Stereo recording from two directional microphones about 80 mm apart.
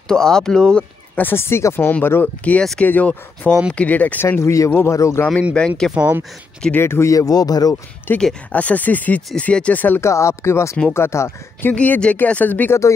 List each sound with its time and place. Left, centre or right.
0.1 s speech: centre
1.1 s speech: left
4.3 s speech: left
5.6 s speech: centre
6.0 s speech: centre
6.7 s speech: left
8.1 s speech: left
10.0 s speech: left
11.7 s speech: centre